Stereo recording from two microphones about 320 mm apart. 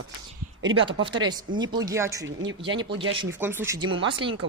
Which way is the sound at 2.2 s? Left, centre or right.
Right.